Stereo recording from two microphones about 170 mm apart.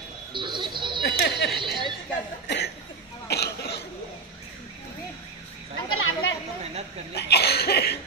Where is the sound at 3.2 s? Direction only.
75° left (ahead or behind).